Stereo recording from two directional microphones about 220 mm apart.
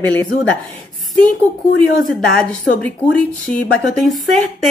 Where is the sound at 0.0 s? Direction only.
5° left (ahead or behind).